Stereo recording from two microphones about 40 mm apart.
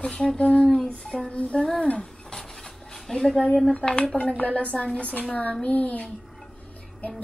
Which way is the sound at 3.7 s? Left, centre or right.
Left.